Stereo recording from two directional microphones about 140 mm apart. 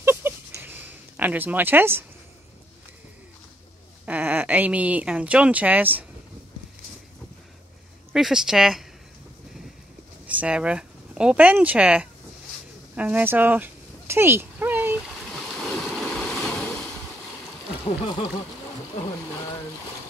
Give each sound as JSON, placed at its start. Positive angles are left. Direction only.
{"t": 0.0, "sound": "a sound", "side_deg": -15}
{"t": 4.0, "sound": "speech", "side_deg": -10}
{"t": 8.1, "sound": "speech", "side_deg": -5}
{"t": 10.2, "sound": "speech", "side_deg": -10}
{"t": 12.9, "sound": "a sound", "side_deg": -10}
{"t": 15.3, "sound": "waves", "side_deg": 0}
{"t": 17.8, "sound": "speech", "side_deg": 40}